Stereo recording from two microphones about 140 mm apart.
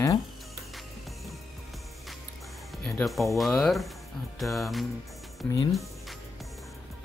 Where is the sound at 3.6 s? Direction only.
Centre (ahead or behind).